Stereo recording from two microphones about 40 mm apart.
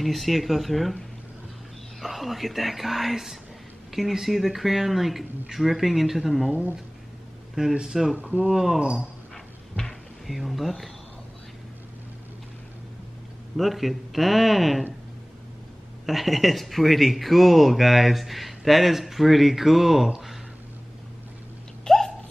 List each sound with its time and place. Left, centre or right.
0.0 s speech: centre
2.0 s speech: centre
7.7 s speech: centre
10.2 s speech: centre
13.6 s speech: centre
16.1 s speech: centre
21.8 s hiccup: centre